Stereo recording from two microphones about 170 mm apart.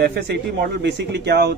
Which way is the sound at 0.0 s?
80° right.